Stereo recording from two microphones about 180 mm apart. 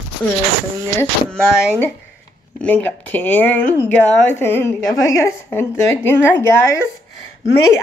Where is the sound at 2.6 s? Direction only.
10° left (ahead or behind).